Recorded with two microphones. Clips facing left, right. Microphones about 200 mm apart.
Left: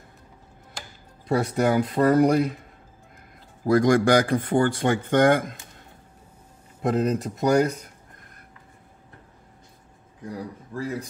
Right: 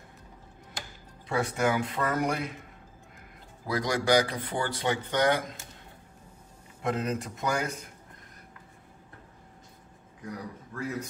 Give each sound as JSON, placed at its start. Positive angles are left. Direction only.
{"t": 1.3, "sound": "speech", "side_deg": 40}
{"t": 3.6, "sound": "speech", "side_deg": 50}
{"t": 6.8, "sound": "speech", "side_deg": 40}
{"t": 10.7, "sound": "speech", "side_deg": 30}